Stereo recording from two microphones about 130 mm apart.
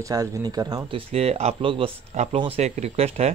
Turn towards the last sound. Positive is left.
turn(degrees=-55)  # may be behind; listen again after turning